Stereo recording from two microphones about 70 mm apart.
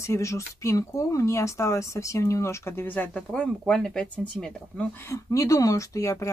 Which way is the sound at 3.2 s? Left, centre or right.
Centre.